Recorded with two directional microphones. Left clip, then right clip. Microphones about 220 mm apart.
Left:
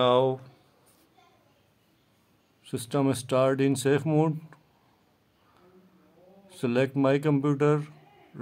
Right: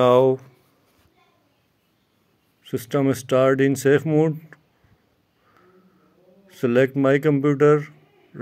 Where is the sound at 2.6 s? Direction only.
10° right (ahead or behind).